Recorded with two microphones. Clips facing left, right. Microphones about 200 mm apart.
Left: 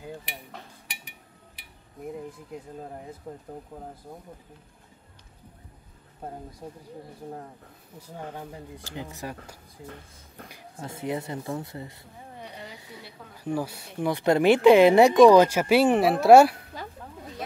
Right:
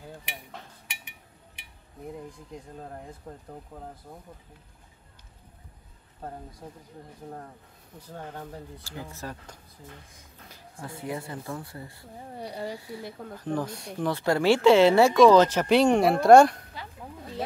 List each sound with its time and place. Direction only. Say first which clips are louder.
0.9 s a sound: left 1 dB; 35° left (ahead or behind)
2.1 s speech: left 3 dB; 5° left (ahead or behind)
8.1 s speech: left 1 dB; 10° left (ahead or behind)
12.4 s a woman's voice: right 8 dB; 35° right (ahead or behind)
13.4 s speech: left 1 dB; 10° left (ahead or behind)